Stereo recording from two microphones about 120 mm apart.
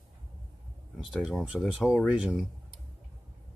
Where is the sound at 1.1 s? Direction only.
5° right (ahead or behind).